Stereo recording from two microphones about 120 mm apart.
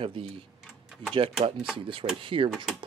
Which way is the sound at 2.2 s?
45° right (ahead or behind).